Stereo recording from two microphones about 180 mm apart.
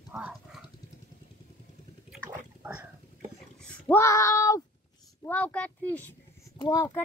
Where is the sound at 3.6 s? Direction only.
5° left (ahead or behind).